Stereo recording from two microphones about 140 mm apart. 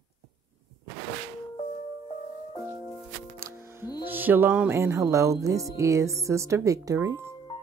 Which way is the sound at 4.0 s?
15° right (ahead or behind).